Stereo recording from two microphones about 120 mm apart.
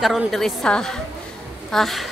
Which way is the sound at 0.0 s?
Centre (ahead or behind).